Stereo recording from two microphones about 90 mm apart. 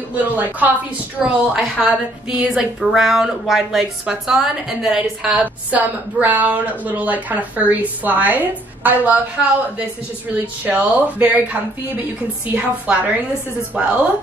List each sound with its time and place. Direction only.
0.1 s a woman's voice: 20° right (ahead or behind)
1.2 s a woman's voice: centre (ahead or behind)
1.8 s a woman's voice: 15° right (ahead or behind)
5.4 s a woman's voice: 15° right (ahead or behind)